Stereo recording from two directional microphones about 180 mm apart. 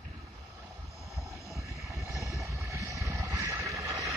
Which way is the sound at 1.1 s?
Centre (ahead or behind).